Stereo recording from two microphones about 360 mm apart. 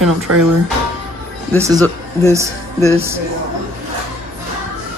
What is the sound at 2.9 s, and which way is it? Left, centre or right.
Speech, centre.